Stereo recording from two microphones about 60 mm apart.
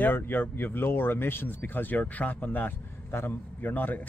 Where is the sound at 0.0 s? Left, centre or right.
Left.